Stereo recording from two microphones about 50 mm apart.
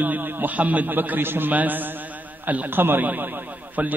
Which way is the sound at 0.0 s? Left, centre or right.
Right.